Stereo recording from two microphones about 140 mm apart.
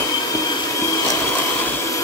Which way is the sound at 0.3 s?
25° left (ahead or behind).